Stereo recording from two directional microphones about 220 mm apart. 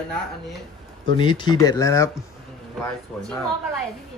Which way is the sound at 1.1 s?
20° left (ahead or behind).